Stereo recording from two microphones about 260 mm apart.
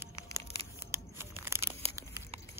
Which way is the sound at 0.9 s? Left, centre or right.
Centre.